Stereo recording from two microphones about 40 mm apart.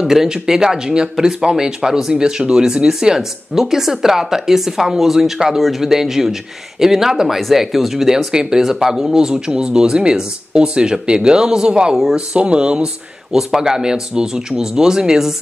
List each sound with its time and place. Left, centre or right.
0.0 s speech: centre
8.3 s speech: centre